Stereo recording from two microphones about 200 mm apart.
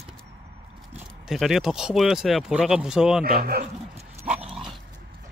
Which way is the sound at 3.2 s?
50° right (ahead or behind).